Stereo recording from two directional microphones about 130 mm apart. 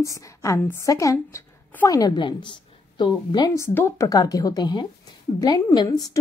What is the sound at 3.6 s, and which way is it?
A woman's voice, 20° left (ahead or behind).